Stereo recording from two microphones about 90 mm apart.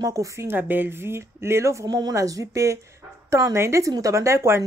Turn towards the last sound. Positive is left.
turn(degrees=-30)  # may be behind; listen again after turning